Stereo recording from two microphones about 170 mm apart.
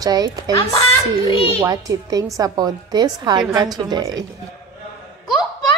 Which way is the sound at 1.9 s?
20° right (ahead or behind).